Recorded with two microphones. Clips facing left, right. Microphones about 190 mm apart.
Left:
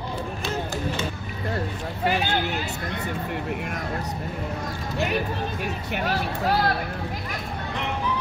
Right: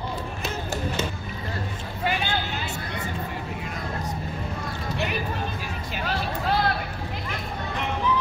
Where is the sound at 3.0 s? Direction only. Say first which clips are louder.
Left 3 dB; 65° left (ahead or behind).